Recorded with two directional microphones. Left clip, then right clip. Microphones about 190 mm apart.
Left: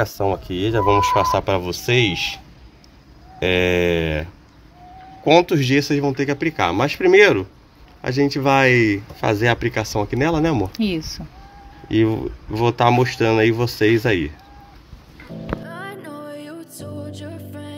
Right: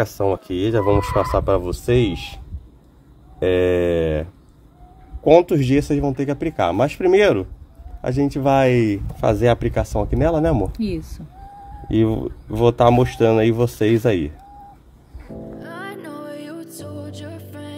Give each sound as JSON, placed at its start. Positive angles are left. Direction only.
{"t": 0.0, "sound": "speech", "side_deg": -50}
{"t": 10.8, "sound": "speech", "side_deg": 0}
{"t": 11.9, "sound": "speech", "side_deg": -50}
{"t": 15.6, "sound": "music", "side_deg": 0}